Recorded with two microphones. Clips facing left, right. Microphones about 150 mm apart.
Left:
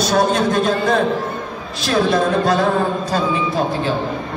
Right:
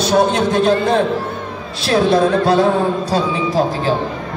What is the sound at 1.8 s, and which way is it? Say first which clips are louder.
Speech: right 3 dB; 30° right (ahead or behind).